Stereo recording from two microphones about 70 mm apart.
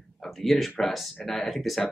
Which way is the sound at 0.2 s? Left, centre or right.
Centre.